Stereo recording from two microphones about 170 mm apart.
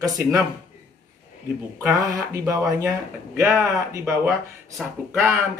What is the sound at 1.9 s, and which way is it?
Speech, 20° right (ahead or behind).